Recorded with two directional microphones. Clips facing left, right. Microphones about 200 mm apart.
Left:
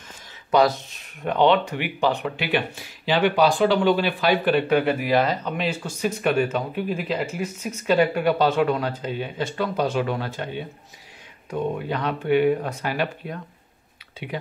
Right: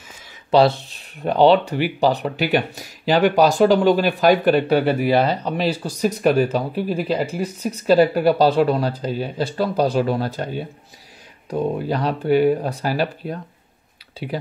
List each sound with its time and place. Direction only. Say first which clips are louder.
0.5 s speech: right 4 dB; 30° right (ahead or behind)